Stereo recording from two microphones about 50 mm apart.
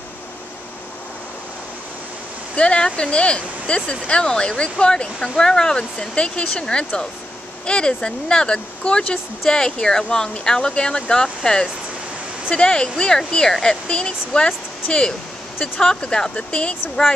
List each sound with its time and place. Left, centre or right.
2.5 s speech: centre